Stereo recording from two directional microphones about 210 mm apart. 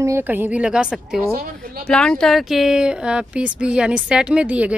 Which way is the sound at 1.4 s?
45° right (ahead or behind).